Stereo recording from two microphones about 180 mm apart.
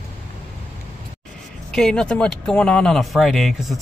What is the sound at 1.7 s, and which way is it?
Speech, 5° left (ahead or behind).